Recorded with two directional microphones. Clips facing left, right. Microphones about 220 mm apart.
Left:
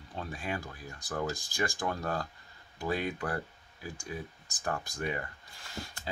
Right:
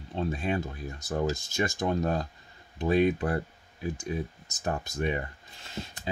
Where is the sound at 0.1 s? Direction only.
25° right (ahead or behind).